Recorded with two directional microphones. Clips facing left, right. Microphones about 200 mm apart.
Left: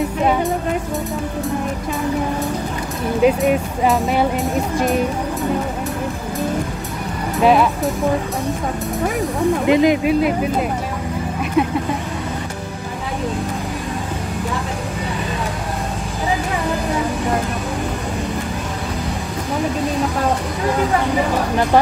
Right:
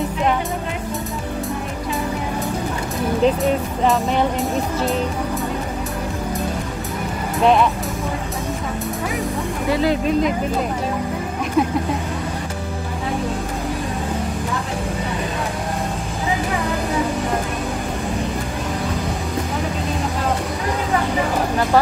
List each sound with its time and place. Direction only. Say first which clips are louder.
3.2 s speech: left 3 dB; 10° left (ahead or behind)
7.4 s speech: left 2 dB; 5° left (ahead or behind)
9.7 s speech: left 3 dB; 15° left (ahead or behind)
11.6 s speech: left 1 dB; centre (ahead or behind)